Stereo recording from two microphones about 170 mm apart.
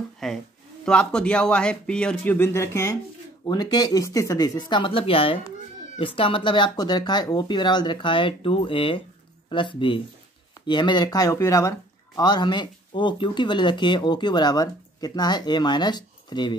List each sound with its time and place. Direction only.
0.2 s speech: centre (ahead or behind); by 16.5 s 25° left (ahead or behind)